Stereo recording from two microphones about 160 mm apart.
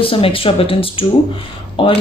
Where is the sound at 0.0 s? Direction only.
35° left (ahead or behind).